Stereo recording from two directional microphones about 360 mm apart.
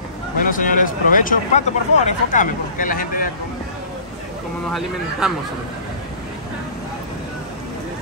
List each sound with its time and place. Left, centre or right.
0.5 s speech: left
5.2 s speech: centre